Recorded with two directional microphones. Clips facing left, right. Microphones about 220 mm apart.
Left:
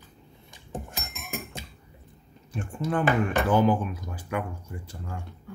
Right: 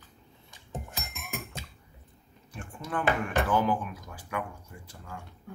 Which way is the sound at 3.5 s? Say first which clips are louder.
Left 6 dB; 25° left (ahead or behind).